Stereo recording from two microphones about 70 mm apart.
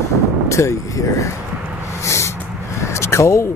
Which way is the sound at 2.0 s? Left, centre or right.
Left.